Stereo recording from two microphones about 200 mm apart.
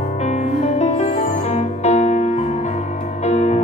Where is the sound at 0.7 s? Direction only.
35° left (ahead or behind).